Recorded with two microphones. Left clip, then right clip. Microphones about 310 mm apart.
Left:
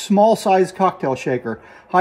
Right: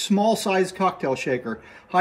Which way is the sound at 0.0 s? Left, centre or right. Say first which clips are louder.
Left 7 dB; left.